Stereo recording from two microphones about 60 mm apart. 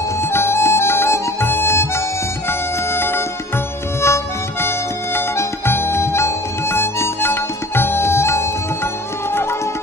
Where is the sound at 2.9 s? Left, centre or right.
Left.